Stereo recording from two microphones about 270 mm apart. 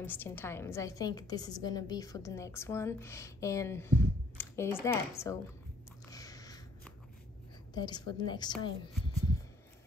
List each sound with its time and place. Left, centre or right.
0.0 s a woman's voice: centre
6.0 s a sound: centre
7.7 s a woman's voice: centre